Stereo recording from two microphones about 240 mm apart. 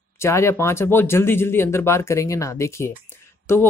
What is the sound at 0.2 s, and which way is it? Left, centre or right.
Speech, centre.